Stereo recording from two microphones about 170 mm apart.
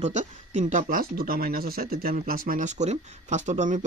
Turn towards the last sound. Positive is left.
turn(degrees=-45)  # may be behind; listen again after turning